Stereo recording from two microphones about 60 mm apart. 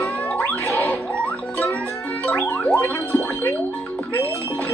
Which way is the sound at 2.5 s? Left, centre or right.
Left.